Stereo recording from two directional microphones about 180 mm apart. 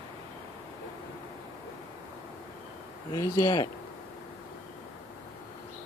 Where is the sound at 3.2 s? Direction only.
20° left (ahead or behind).